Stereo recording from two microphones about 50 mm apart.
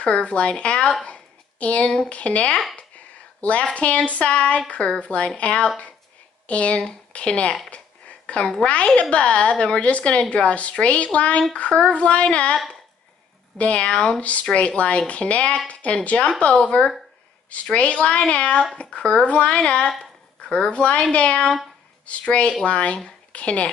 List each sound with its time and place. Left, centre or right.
0.0 s a woman's voice: left
1.0 s a sound: left
2.0 s a woman's voice: left
13.6 s a woman's voice: left
20.0 s a sound: centre
21.1 s a woman's voice: left